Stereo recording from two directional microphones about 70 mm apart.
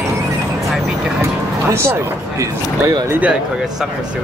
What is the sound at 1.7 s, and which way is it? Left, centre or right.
Speech, right.